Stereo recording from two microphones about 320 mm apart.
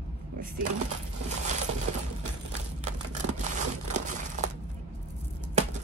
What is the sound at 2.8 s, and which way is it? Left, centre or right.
Crumpling, right.